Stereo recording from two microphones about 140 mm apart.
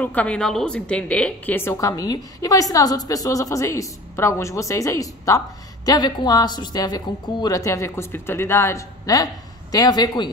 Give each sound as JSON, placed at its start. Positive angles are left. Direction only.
{"t": 0.0, "sound": "a woman's voice", "side_deg": 10}